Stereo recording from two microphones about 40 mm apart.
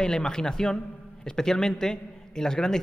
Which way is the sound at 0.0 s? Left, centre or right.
Centre.